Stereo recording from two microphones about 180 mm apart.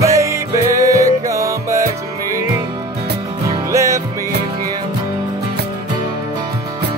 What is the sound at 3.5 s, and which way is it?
Music, 15° right (ahead or behind).